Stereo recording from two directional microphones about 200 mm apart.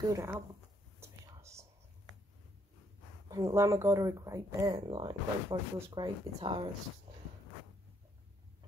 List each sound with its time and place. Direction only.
0.1 s speech: 10° right (ahead or behind)
1.0 s a sound: 15° right (ahead or behind)
3.3 s speech: 15° right (ahead or behind)
4.6 s speech: 25° right (ahead or behind)